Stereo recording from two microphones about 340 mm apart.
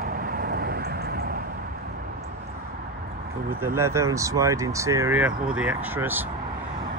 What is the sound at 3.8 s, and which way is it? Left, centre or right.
Speech, centre.